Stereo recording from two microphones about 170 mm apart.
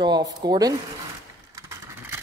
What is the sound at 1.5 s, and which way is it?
Vehicle, 20° right (ahead or behind).